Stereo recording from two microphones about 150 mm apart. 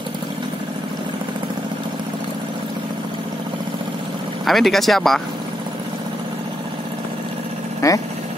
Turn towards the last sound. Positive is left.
turn(degrees=20)  # may be behind; listen again after turning